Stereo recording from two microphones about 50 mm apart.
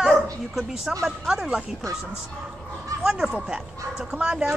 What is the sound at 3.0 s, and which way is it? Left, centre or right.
A woman's voice, centre.